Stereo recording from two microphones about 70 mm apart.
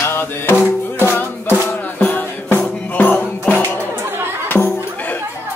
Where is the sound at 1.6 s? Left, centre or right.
Left.